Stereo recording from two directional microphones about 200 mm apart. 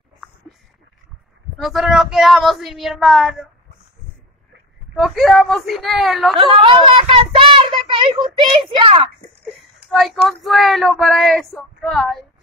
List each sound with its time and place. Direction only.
1.6 s speech: centre (ahead or behind)
4.9 s speech: centre (ahead or behind)
6.3 s a child's voice: 25° right (ahead or behind)
9.4 s speech: centre (ahead or behind)